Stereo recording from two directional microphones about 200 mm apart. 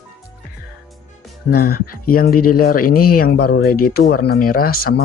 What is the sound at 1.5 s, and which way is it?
Speech, 50° left (ahead or behind).